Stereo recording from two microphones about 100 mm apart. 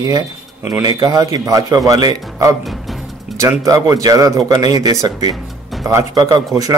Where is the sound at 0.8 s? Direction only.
40° right (ahead or behind).